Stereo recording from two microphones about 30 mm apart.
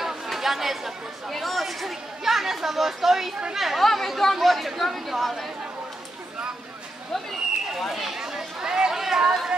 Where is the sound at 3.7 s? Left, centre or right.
Centre.